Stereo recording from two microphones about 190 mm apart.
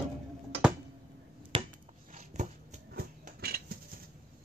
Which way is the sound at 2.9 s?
55° right (ahead or behind).